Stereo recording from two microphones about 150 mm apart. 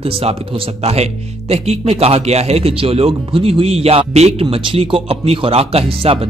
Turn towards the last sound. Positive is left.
turn(degrees=-40)  # may be behind; listen again after turning